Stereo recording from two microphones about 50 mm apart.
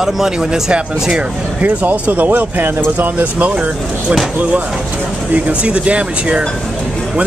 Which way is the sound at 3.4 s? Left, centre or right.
Right.